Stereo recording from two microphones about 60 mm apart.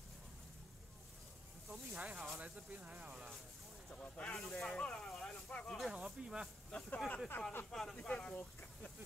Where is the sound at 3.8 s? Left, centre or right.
Centre.